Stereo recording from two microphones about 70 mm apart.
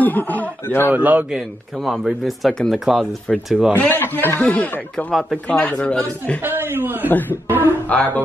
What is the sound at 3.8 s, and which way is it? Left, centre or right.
Speech, left.